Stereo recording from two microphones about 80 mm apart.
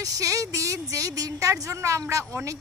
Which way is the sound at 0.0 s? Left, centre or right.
Right.